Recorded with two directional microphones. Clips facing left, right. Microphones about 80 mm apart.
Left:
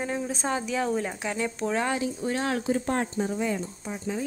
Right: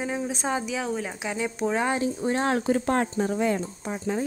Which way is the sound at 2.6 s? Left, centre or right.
Right.